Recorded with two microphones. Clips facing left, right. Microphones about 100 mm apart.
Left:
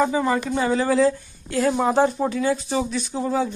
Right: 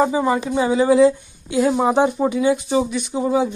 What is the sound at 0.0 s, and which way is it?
Speech, 15° right (ahead or behind).